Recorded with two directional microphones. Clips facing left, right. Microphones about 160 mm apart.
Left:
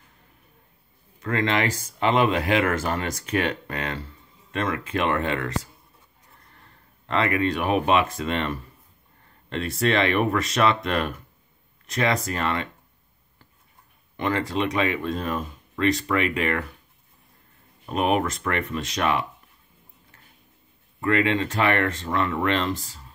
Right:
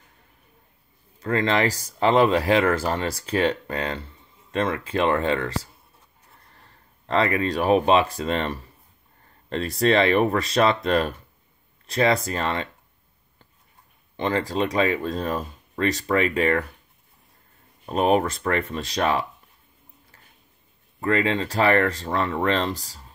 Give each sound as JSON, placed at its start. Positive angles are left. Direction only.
{"t": 1.2, "sound": "speech", "side_deg": -35}
{"t": 7.1, "sound": "speech", "side_deg": -35}
{"t": 14.1, "sound": "speech", "side_deg": -30}
{"t": 17.8, "sound": "speech", "side_deg": -35}
{"t": 21.0, "sound": "speech", "side_deg": -35}